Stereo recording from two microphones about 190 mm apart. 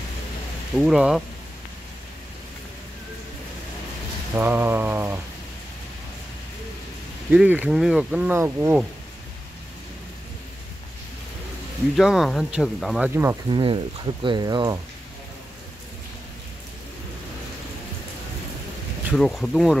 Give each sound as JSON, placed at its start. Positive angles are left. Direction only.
{"t": 0.7, "sound": "speech", "side_deg": -5}
{"t": 4.4, "sound": "speech", "side_deg": -10}
{"t": 7.2, "sound": "speech", "side_deg": -10}
{"t": 12.0, "sound": "speech", "side_deg": 0}
{"t": 13.1, "sound": "speech", "side_deg": -10}
{"t": 13.5, "sound": "speech", "side_deg": -25}
{"t": 19.1, "sound": "speech", "side_deg": 5}